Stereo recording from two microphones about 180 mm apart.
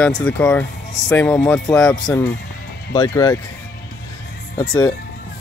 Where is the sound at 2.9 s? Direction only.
20° left (ahead or behind).